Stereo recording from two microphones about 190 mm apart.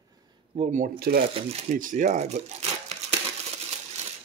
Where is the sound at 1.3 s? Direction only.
35° right (ahead or behind).